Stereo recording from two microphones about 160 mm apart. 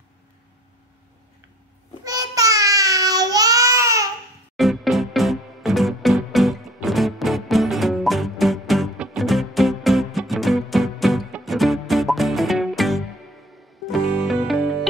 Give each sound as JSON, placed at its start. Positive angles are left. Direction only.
{"t": 2.0, "sound": "child singing", "side_deg": -20}
{"t": 4.6, "sound": "music", "side_deg": 0}